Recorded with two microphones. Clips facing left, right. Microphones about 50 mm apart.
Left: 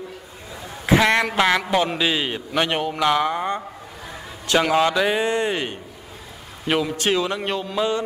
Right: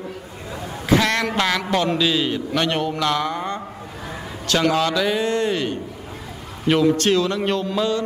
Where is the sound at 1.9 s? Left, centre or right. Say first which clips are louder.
Right 2 dB; left.